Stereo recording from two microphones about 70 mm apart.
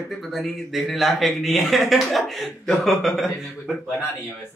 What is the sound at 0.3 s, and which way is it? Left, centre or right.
A man's voice, centre.